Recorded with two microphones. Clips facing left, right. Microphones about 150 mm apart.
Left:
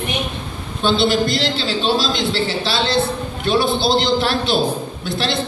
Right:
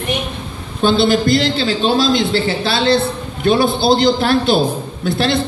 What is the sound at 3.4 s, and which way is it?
A man's voice, 50° right (ahead or behind).